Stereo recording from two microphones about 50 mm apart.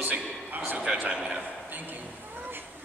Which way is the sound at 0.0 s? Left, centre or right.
Right.